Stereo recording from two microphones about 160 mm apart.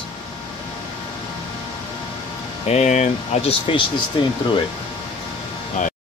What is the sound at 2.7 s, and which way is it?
Speech, 45° left (ahead or behind).